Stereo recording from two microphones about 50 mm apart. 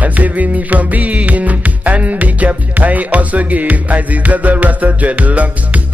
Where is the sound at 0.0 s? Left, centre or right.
Right.